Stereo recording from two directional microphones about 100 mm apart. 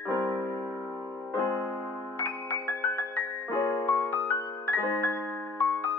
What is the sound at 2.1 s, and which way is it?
Music, 15° left (ahead or behind).